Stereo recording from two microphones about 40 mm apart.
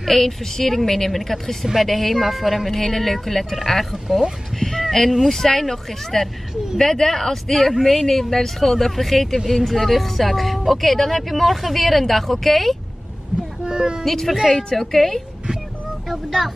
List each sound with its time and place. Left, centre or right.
0.0 s speech: centre
4.6 s a sound: centre
5.3 s speech: centre
13.7 s speech: centre
14.0 s speech: centre
16.3 s speech: centre